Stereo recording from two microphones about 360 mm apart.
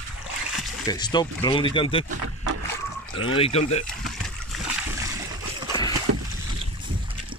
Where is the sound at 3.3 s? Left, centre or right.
Centre.